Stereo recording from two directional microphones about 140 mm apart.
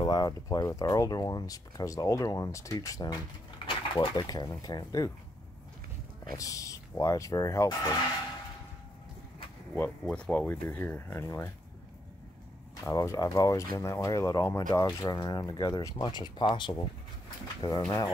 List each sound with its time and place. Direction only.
0.0 s speech: 30° left (ahead or behind)
3.6 s speech: 35° left (ahead or behind)
6.3 s speech: 25° left (ahead or behind)
10.0 s speech: 5° left (ahead or behind)
12.8 s speech: 20° left (ahead or behind)